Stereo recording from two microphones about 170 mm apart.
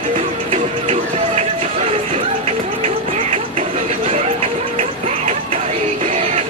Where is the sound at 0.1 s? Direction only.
35° right (ahead or behind).